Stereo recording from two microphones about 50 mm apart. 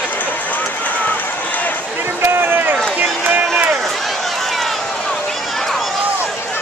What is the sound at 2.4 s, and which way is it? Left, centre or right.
Run, right.